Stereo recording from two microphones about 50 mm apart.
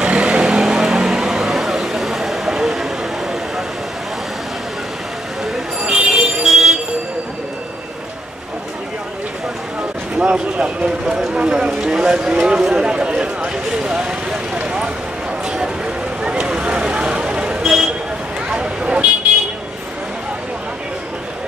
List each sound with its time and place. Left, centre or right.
0.0 s vehicle: right
5.4 s vehicle: centre
10.1 s a sound: centre
12.4 s clip-clop: centre
12.6 s a sound: centre
16.2 s vehicle: centre